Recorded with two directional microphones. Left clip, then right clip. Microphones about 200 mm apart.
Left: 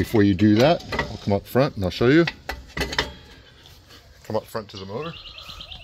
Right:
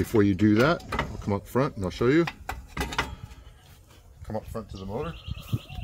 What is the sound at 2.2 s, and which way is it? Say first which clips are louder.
Dishes: left 5 dB; 25° right (ahead or behind).